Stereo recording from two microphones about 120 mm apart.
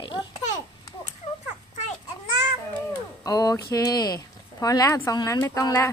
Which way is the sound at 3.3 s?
30° left (ahead or behind).